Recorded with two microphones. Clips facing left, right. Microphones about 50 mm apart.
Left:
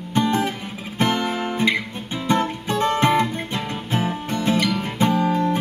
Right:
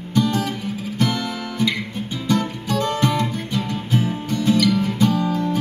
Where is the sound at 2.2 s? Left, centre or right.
Left.